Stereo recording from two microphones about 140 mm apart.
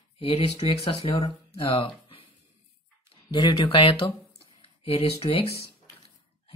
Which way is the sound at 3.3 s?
35° left (ahead or behind).